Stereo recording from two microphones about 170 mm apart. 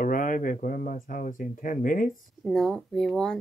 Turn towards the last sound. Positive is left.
turn(degrees=5)  # may be behind; listen again after turning